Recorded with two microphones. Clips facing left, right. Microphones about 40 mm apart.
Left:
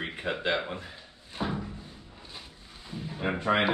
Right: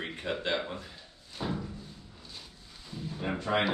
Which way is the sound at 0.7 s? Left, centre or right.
Left.